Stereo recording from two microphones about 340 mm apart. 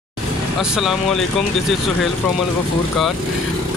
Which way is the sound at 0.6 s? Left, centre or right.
Centre.